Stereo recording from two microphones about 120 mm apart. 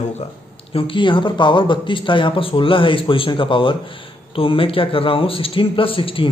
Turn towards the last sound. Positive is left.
turn(degrees=50)  # may be behind; listen again after turning